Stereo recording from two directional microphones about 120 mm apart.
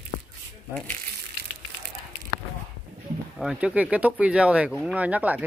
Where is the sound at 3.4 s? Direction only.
10° right (ahead or behind).